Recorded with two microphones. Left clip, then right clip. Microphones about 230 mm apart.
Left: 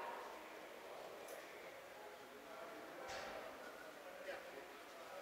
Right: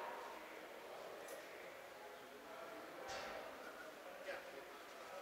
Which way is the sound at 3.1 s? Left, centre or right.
Centre.